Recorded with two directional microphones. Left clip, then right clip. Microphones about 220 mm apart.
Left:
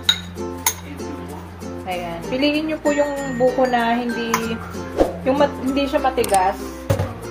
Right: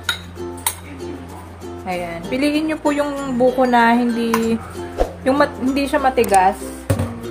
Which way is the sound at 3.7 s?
25° right (ahead or behind).